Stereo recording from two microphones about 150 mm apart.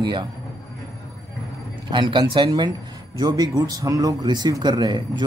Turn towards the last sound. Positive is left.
turn(degrees=-30)  # may be behind; listen again after turning